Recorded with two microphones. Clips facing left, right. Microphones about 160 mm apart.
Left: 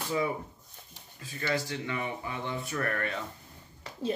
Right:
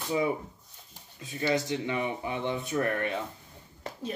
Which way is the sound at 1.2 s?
20° right (ahead or behind).